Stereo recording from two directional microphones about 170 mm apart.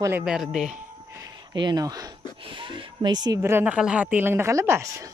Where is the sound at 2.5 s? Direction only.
30° right (ahead or behind).